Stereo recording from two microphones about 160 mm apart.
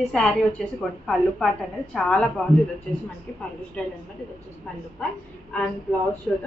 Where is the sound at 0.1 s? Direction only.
5° left (ahead or behind).